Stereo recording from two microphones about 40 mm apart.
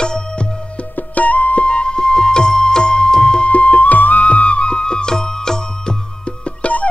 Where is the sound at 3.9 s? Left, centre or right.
Left.